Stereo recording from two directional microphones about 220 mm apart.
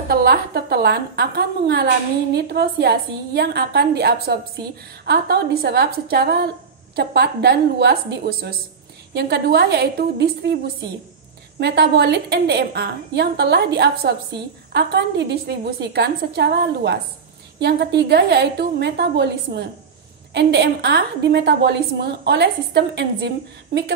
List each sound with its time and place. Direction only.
0.1 s a woman's voice: 45° right (ahead or behind)
11.6 s a woman's voice: 50° right (ahead or behind)